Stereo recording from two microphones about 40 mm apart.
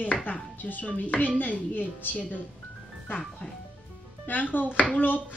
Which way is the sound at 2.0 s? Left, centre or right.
Left.